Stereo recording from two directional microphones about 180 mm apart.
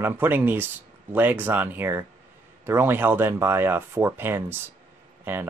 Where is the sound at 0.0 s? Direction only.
10° right (ahead or behind).